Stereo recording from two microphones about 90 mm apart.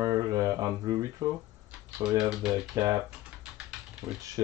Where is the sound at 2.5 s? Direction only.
35° right (ahead or behind).